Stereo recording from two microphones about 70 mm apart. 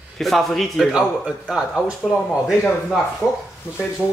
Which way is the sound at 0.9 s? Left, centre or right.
Centre.